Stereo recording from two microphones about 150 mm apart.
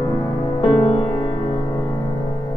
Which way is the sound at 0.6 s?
30° left (ahead or behind).